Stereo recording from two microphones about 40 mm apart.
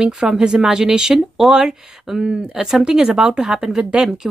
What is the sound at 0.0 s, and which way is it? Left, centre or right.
Speech, centre.